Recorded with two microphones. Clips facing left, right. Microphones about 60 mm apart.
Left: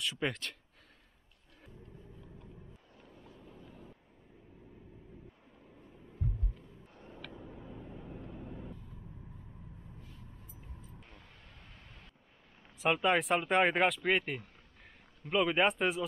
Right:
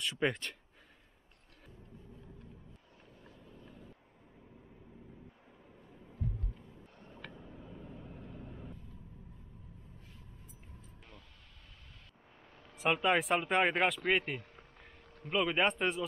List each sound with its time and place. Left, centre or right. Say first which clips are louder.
0.0 s speech: right 2 dB; centre
3.4 s vehicle: even; left
7.3 s vehicle: left 2 dB; centre
12.7 s speech: left 1 dB; centre